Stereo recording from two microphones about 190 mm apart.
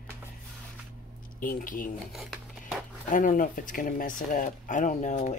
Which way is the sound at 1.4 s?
45° left (ahead or behind).